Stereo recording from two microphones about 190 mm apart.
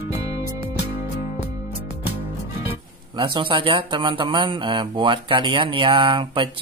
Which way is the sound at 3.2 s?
25° right (ahead or behind).